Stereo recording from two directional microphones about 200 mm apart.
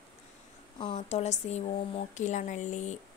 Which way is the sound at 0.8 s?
30° left (ahead or behind).